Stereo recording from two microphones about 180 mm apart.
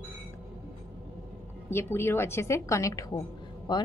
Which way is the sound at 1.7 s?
15° left (ahead or behind).